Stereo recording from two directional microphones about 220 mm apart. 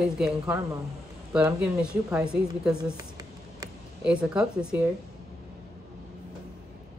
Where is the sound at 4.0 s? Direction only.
5° right (ahead or behind).